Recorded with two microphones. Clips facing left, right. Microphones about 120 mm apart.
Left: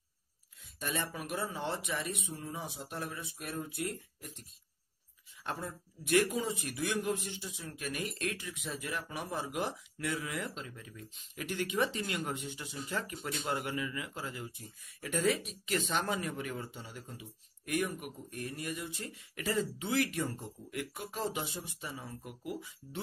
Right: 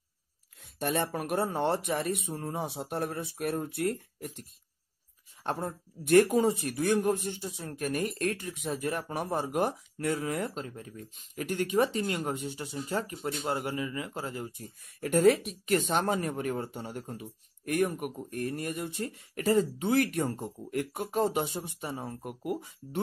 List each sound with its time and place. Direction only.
0.7 s speech: 55° right (ahead or behind)
5.4 s speech: 50° right (ahead or behind)
15.0 s speech: 55° right (ahead or behind)